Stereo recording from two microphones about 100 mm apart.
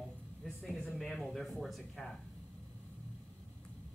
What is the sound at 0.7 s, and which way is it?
Speech, 5° left (ahead or behind).